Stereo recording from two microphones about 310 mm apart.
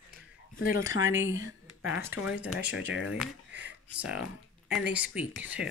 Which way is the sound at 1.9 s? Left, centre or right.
Centre.